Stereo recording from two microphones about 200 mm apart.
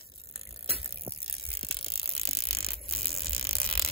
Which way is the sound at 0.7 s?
30° left (ahead or behind).